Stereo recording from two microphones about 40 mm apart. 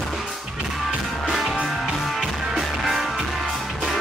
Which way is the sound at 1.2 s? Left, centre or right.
Centre.